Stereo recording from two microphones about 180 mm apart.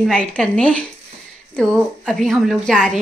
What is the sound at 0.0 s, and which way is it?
A woman's voice, 5° left (ahead or behind).